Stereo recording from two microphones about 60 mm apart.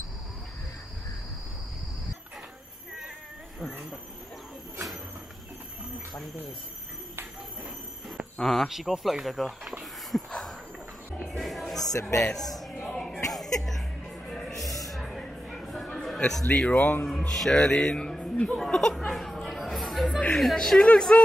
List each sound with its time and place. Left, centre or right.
8.4 s speech: centre
8.6 s speech: centre
10.1 s a sound: centre
11.3 s music: centre
11.8 s speech: left
12.8 s a sound: centre
13.3 s music: centre
15.6 s a sound: centre
16.4 s speech: left
17.1 s speech: centre
18.3 s a sound: left
18.6 s chatter: centre
20.5 s speech: centre